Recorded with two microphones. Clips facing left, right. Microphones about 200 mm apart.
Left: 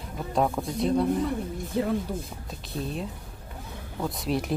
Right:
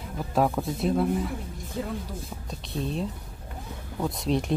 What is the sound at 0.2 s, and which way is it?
Speech, centre (ahead or behind).